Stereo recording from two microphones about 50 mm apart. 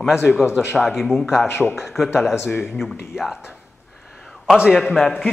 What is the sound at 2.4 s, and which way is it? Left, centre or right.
Speech, left.